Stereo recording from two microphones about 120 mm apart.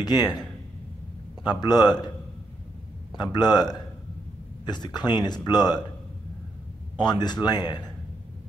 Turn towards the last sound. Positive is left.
turn(degrees=35)  # may be behind; listen again after turning